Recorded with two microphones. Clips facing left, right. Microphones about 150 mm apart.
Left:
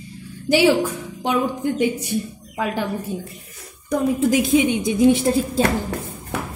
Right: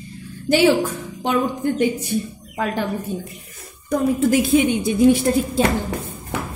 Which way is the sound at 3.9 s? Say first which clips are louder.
Right 1 dB; 15° left (ahead or behind).